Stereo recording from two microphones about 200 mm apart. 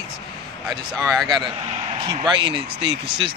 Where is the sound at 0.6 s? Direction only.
Centre (ahead or behind).